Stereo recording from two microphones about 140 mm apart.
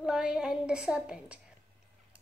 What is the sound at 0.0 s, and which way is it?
A woman's voice, 5° right (ahead or behind).